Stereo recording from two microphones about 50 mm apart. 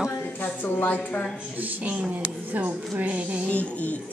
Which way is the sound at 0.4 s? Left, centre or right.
Left.